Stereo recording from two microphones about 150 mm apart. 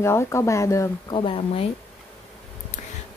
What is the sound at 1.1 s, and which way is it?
Speech, 35° left (ahead or behind).